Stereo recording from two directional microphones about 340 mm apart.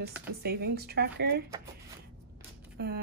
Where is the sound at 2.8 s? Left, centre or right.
Right.